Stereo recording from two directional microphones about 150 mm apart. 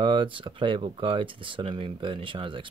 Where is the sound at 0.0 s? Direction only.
35° right (ahead or behind).